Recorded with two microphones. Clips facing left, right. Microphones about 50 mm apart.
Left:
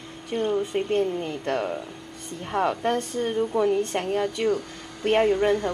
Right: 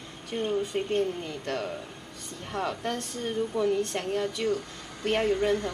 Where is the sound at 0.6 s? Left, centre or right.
Centre.